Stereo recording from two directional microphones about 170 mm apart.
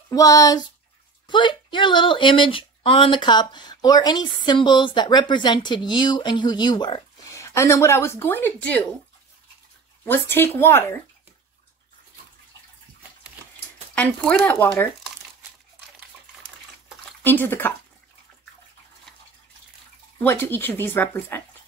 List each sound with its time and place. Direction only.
0.1 s speech: 20° left (ahead or behind)
10.3 s speech: 10° left (ahead or behind)
13.9 s speech: 10° left (ahead or behind)
17.2 s speech: 10° left (ahead or behind)
20.2 s speech: 15° left (ahead or behind)